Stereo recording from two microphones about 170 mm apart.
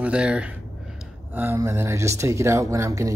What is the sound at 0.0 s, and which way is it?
Speech, 5° right (ahead or behind).